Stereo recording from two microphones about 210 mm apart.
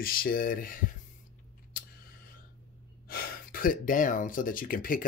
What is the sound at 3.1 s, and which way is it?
Speech, 45° left (ahead or behind).